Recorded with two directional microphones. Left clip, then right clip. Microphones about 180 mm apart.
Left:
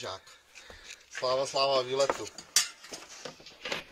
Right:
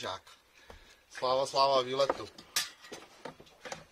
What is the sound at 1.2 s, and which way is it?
Speech, 30° right (ahead or behind).